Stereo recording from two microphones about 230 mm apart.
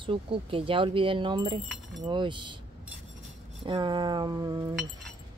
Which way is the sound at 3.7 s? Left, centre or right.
Centre.